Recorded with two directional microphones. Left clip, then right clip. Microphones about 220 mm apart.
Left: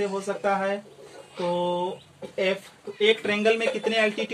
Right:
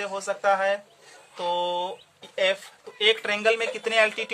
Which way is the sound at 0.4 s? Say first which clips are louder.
Right 3 dB; 40° right (ahead or behind).